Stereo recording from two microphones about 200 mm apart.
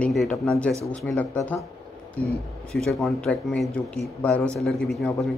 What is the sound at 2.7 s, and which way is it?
A man's voice, centre (ahead or behind).